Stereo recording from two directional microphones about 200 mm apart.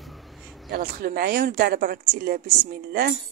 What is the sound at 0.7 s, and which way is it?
Speech, 45° right (ahead or behind).